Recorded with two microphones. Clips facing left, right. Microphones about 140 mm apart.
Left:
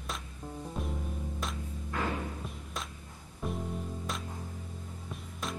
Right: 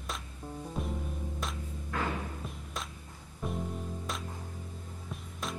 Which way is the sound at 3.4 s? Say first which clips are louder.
Even; centre (ahead or behind).